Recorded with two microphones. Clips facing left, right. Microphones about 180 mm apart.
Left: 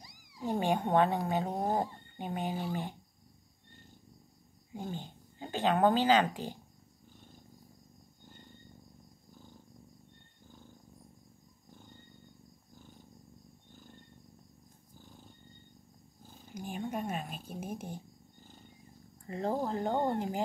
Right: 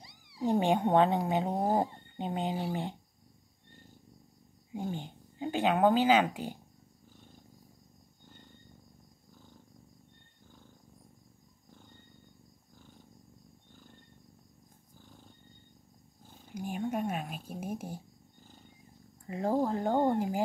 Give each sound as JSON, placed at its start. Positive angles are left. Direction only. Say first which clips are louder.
{"t": 0.0, "sound": "cat", "louder": "right 6 dB", "side_deg": -30}
{"t": 0.5, "sound": "speech", "louder": "right 3 dB", "side_deg": -20}
{"t": 4.7, "sound": "speech", "louder": "right 3 dB", "side_deg": -10}
{"t": 16.5, "sound": "speech", "louder": "right 3 dB", "side_deg": -5}
{"t": 19.2, "sound": "speech", "louder": "right 4 dB", "side_deg": -10}